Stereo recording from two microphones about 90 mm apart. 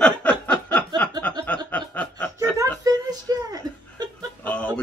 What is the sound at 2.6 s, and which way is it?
Speech, 45° right (ahead or behind).